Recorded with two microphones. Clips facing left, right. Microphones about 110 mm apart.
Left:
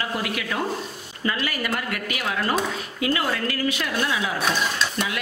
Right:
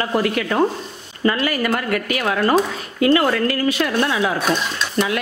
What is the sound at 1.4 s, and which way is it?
A woman's voice, 55° right (ahead or behind).